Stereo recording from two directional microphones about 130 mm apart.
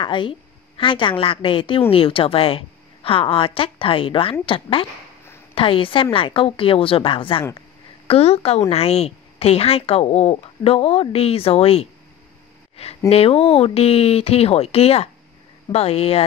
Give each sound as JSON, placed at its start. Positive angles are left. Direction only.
{"t": 0.0, "sound": "a woman's voice", "side_deg": 40}
{"t": 13.1, "sound": "a woman's voice", "side_deg": 50}